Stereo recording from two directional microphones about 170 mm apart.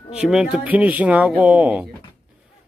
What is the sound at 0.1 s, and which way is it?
Speech, 5° right (ahead or behind).